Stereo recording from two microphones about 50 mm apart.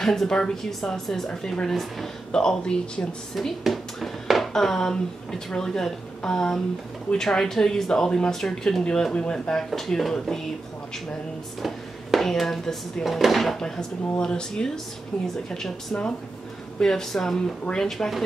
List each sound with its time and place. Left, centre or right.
0.0 s speech: centre
2.3 s speech: centre
3.3 s speech: centre
9.7 s speech: centre
11.6 s speech: centre
13.6 s speech: centre